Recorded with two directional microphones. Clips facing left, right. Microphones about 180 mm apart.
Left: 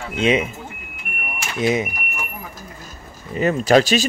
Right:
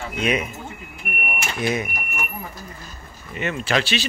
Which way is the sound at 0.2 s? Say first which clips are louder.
Left 5 dB; 25° left (ahead or behind).